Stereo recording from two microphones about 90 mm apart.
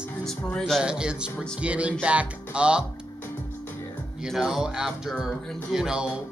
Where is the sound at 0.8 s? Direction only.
10° right (ahead or behind).